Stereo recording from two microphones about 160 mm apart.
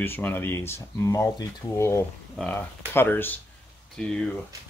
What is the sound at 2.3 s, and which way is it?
Speech, 5° left (ahead or behind).